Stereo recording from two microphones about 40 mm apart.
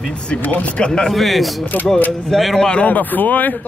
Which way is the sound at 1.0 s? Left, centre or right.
Centre.